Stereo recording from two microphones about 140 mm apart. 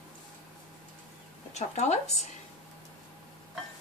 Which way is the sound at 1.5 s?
55° left (ahead or behind).